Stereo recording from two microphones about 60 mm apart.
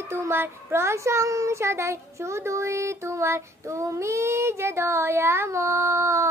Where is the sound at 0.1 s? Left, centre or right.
Right.